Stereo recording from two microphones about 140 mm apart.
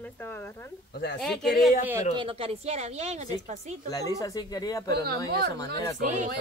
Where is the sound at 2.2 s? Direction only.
40° right (ahead or behind).